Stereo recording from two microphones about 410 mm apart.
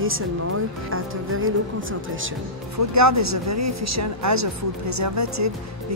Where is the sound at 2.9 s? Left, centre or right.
Right.